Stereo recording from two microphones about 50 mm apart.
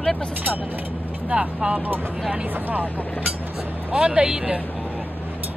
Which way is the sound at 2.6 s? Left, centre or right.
Right.